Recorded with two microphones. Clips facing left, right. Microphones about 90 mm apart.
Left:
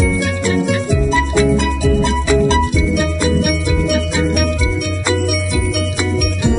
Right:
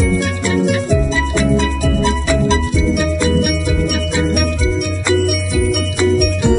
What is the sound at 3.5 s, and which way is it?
Music, centre (ahead or behind).